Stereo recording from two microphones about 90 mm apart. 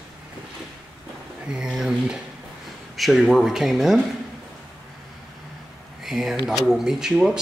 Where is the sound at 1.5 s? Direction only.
5° right (ahead or behind).